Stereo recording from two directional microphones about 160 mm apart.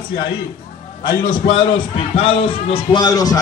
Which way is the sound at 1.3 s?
30° left (ahead or behind).